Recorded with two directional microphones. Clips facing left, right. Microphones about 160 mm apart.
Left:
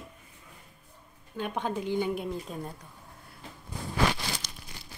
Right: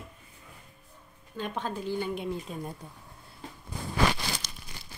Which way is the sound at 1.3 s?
15° left (ahead or behind).